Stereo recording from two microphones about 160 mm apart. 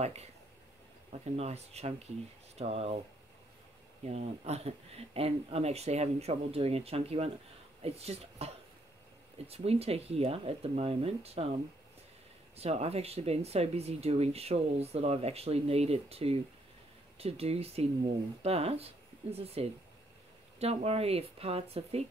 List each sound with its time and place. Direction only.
0.0 s speech: 40° right (ahead or behind)
4.0 s speech: 40° right (ahead or behind)
12.5 s speech: 40° right (ahead or behind)